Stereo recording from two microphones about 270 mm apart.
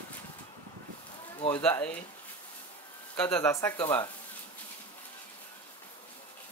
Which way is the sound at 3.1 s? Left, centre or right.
Centre.